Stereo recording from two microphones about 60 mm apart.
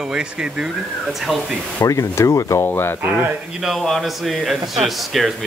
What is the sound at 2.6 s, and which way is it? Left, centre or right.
Speech, left.